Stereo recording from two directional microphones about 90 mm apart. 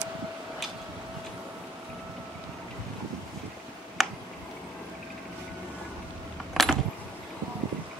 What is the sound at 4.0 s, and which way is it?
Tick, centre (ahead or behind).